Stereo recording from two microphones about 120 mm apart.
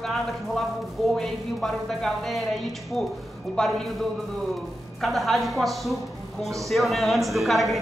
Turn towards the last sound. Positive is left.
turn(degrees=0)  # may be behind; listen again after turning